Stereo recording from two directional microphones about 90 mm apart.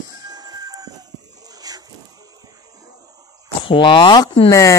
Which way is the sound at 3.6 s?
65° left (ahead or behind).